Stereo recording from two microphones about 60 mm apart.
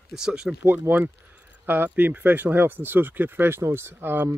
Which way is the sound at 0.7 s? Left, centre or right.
Right.